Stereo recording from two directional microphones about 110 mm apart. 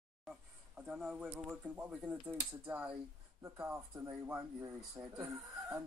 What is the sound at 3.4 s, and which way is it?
Speech, 25° right (ahead or behind).